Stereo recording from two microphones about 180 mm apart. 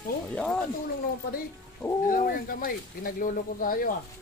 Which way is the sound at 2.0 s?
50° left (ahead or behind).